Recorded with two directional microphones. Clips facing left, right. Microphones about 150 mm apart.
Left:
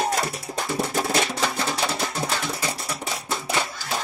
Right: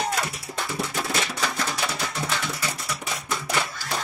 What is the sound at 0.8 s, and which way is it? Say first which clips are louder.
Music: left 5 dB; 40° left (ahead or behind).